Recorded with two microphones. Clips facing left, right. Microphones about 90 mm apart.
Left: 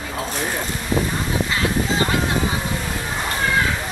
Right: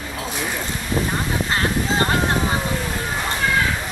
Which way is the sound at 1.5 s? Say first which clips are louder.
Right 2 dB; 45° right (ahead or behind).